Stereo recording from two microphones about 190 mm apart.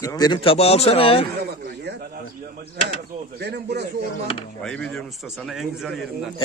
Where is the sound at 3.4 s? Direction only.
60° right (ahead or behind).